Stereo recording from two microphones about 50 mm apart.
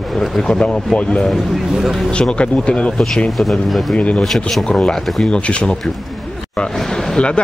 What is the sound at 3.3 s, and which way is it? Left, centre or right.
Speech, centre.